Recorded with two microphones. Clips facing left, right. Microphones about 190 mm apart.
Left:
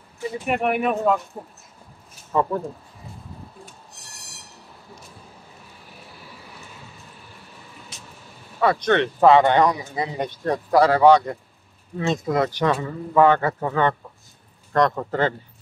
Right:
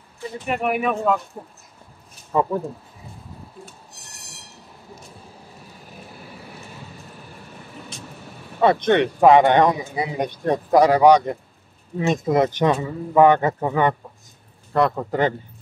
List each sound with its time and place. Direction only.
0.5 s speech: centre (ahead or behind)
2.3 s speech: 10° right (ahead or behind)
8.5 s speech: 20° right (ahead or behind)